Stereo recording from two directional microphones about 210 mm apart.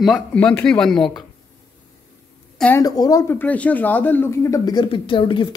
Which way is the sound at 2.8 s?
15° left (ahead or behind).